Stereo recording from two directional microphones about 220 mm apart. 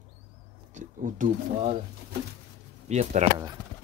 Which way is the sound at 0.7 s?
35° right (ahead or behind).